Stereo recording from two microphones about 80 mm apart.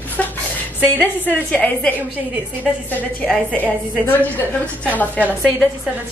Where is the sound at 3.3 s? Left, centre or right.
Centre.